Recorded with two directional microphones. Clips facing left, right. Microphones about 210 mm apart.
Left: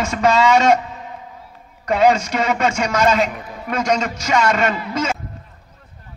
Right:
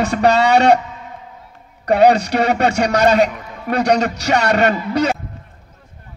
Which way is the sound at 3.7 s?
35° right (ahead or behind).